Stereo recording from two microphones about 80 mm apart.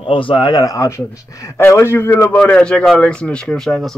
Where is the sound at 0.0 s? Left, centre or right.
Left.